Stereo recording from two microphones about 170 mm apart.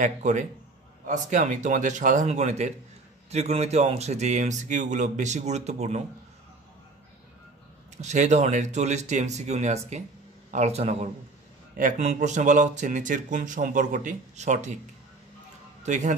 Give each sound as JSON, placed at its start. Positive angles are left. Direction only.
{"t": 0.0, "sound": "a man's voice", "side_deg": -45}
{"t": 8.0, "sound": "a man's voice", "side_deg": -45}
{"t": 15.8, "sound": "speech", "side_deg": -45}